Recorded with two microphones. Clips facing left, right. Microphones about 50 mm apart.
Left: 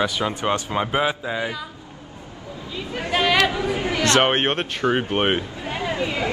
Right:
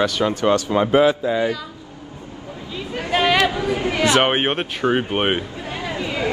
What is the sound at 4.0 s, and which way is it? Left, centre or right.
Speech, centre.